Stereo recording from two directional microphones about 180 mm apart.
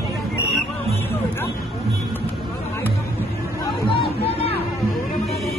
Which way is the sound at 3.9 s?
35° left (ahead or behind).